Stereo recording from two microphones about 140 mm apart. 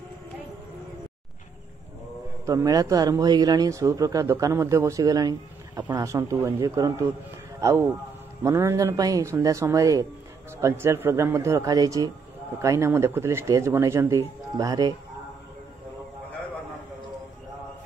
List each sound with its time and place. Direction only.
2.4 s speech: 25° right (ahead or behind)
8.5 s speech: 20° right (ahead or behind)